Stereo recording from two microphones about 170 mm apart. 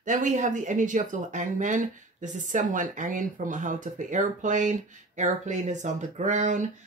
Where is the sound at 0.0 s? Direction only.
50° right (ahead or behind).